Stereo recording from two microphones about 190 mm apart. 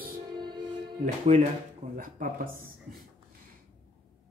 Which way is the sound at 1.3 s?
35° right (ahead or behind).